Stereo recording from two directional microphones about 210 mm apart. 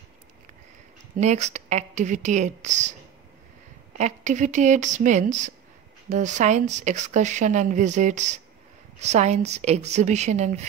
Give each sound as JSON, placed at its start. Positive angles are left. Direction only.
{"t": 1.2, "sound": "a woman's voice", "side_deg": -35}
{"t": 4.0, "sound": "a woman's voice", "side_deg": -35}